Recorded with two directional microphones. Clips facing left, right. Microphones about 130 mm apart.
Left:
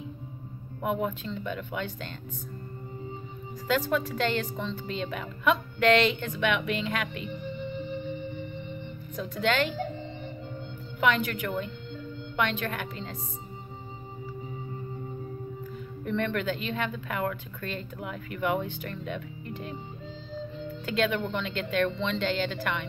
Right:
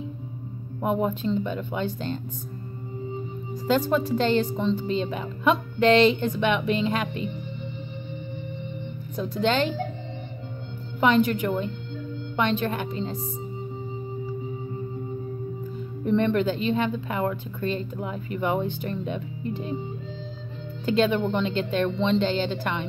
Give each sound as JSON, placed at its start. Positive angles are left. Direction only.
{"t": 0.8, "sound": "a woman's voice", "side_deg": -30}
{"t": 3.6, "sound": "a woman's voice", "side_deg": -30}
{"t": 9.1, "sound": "a woman's voice", "side_deg": -30}
{"t": 11.0, "sound": "a woman's voice", "side_deg": -30}
{"t": 16.0, "sound": "a woman's voice", "side_deg": -30}
{"t": 20.8, "sound": "a woman's voice", "side_deg": -30}